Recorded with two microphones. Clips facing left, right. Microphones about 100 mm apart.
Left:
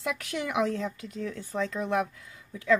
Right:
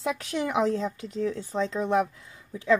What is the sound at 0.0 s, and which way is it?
Speech, 30° right (ahead or behind).